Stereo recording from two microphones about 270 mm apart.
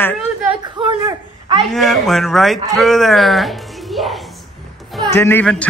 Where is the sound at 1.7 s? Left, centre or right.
Centre.